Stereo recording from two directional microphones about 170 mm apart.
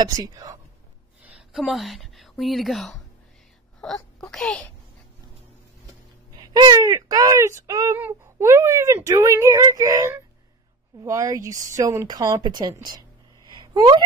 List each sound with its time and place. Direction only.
0.0 s speech: 20° right (ahead or behind)
1.2 s a woman's voice: 5° right (ahead or behind)
6.5 s speech: 20° right (ahead or behind)
13.6 s a sound: 25° right (ahead or behind)